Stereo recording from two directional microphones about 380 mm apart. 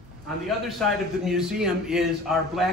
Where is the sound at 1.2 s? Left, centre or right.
Centre.